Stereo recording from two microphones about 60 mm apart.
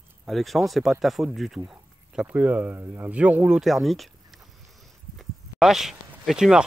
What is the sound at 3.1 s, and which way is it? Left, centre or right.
Speech, right.